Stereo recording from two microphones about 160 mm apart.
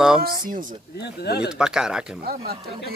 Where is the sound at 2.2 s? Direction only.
75° right (ahead or behind).